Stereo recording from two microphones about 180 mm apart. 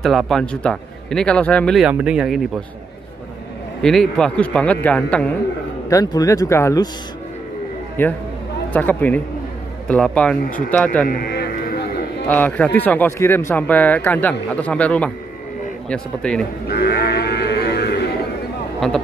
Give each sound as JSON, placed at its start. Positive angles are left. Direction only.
{"t": 0.0, "sound": "a man's voice", "side_deg": 0}
{"t": 3.8, "sound": "a man's voice", "side_deg": 5}
{"t": 5.9, "sound": "speech", "side_deg": 20}
{"t": 8.0, "sound": "speech", "side_deg": 10}
{"t": 11.1, "sound": "speech", "side_deg": 55}
{"t": 12.3, "sound": "a man's voice", "side_deg": 10}
{"t": 16.6, "sound": "sheep", "side_deg": 60}
{"t": 18.8, "sound": "a man's voice", "side_deg": 0}